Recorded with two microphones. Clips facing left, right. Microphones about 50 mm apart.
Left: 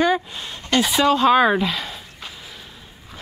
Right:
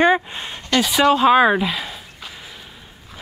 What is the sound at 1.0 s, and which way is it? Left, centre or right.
A woman's voice, centre.